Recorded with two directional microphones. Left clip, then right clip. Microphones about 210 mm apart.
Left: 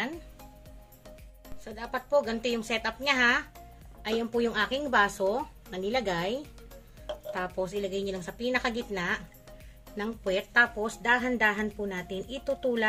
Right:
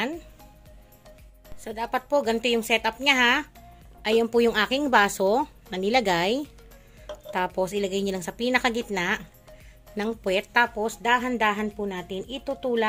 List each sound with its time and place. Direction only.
1.6 s a woman's voice: 50° right (ahead or behind); by 12.8 s 30° right (ahead or behind)